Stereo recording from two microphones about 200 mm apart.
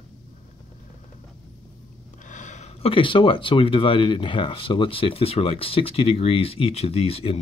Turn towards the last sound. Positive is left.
turn(degrees=30)  # may be behind; listen again after turning